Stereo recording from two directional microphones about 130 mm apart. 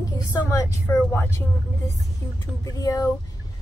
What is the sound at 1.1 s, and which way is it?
Speech, 20° left (ahead or behind).